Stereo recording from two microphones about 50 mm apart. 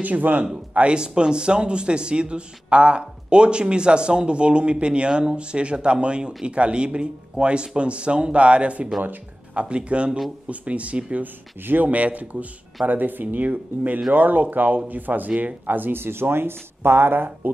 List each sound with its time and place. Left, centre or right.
0.0 s speech: right
0.7 s a man's voice: centre
11.6 s speech: right